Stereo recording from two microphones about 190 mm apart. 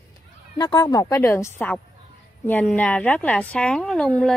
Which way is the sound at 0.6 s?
25° left (ahead or behind).